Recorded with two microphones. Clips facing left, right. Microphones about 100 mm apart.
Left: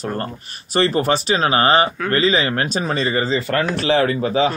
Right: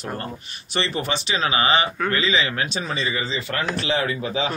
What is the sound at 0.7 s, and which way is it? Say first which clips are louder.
Speech: left 8 dB; 45° left (ahead or behind).